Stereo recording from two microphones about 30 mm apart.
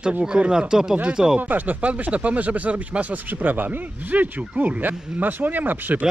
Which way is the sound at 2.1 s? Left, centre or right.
Right.